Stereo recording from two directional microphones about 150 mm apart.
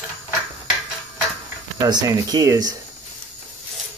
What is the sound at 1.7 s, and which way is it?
Speech, 25° right (ahead or behind).